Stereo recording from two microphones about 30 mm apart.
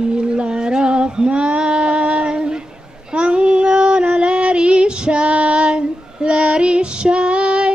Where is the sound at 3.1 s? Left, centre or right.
Right.